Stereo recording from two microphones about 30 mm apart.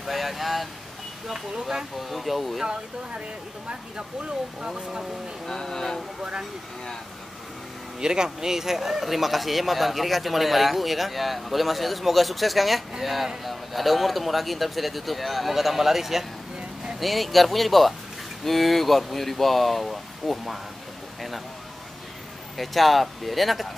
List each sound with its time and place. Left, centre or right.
0.0 s a sound: centre
1.7 s speech: centre
2.0 s speech: centre
5.5 s speech: centre
8.0 s speech: right; by 20.3 s centre
22.6 s speech: centre